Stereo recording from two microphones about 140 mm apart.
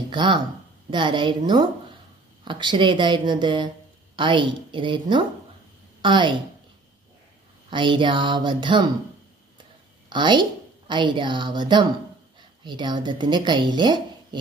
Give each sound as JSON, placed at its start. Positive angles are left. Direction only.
{"t": 0.1, "sound": "a woman's voice", "side_deg": -35}
{"t": 7.7, "sound": "a woman's voice", "side_deg": -35}
{"t": 10.0, "sound": "a woman's voice", "side_deg": -35}